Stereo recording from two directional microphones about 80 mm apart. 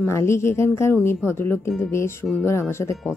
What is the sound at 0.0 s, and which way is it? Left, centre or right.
Speech, left.